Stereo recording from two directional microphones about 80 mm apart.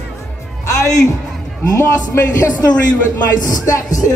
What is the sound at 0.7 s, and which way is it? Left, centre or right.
Music, left.